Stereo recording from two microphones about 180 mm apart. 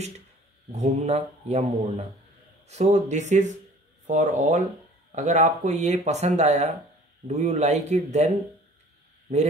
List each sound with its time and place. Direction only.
0.7 s speech: 40° right (ahead or behind)